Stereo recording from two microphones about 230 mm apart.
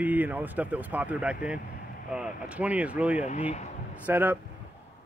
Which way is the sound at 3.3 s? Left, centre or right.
Left.